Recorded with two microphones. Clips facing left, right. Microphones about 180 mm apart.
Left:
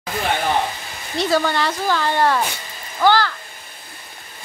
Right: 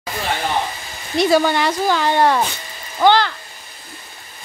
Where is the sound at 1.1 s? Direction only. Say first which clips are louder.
Right 4 dB; 15° right (ahead or behind).